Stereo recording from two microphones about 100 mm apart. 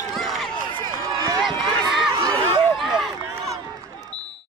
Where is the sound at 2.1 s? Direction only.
40° right (ahead or behind).